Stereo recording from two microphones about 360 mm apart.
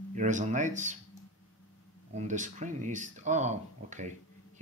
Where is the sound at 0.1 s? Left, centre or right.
Centre.